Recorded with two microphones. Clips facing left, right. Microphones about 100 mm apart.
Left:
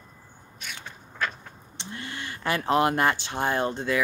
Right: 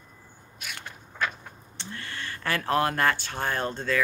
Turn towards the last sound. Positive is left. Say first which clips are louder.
# left 2 dB
turn(degrees=15)  # may be behind; listen again after turning